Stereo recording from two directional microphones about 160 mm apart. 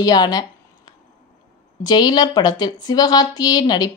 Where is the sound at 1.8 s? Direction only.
25° left (ahead or behind).